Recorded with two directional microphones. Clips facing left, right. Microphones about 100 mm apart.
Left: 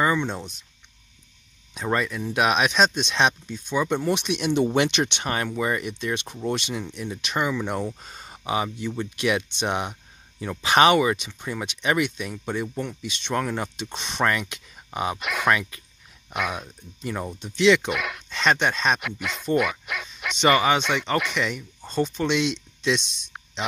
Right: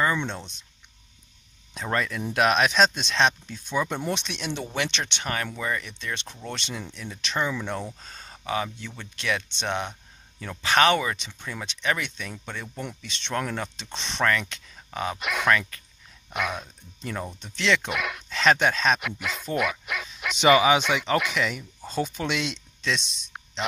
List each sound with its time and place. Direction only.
0.0 s speech: 10° left (ahead or behind)
1.7 s speech: 5° left (ahead or behind)
4.1 s speech: 10° left (ahead or behind)
15.1 s speech: centre (ahead or behind)